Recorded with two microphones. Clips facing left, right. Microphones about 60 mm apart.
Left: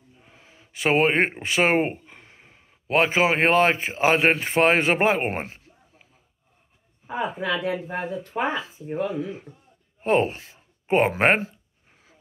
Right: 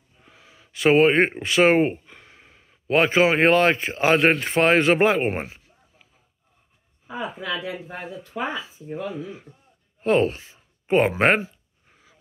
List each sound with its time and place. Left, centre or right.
0.3 s a sound: left
0.7 s speech: centre
1.6 s a sound: centre
3.3 s speech: centre
7.1 s speech: left
10.0 s speech: left